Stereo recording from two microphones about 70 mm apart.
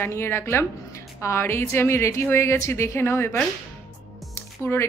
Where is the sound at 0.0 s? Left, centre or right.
Left.